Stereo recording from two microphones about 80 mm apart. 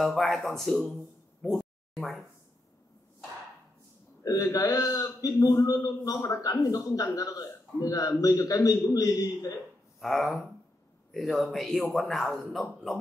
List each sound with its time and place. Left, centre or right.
0.0 s speech: centre
4.2 s a man's voice: left
9.9 s speech: centre